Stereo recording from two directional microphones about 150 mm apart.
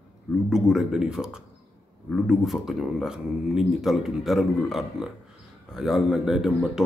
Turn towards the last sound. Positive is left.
turn(degrees=0)  # may be behind; listen again after turning